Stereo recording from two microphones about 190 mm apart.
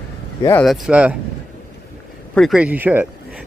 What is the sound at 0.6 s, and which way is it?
Speech, centre (ahead or behind).